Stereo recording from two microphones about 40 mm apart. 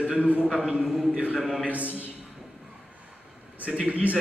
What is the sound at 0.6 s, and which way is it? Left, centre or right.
Speech, centre.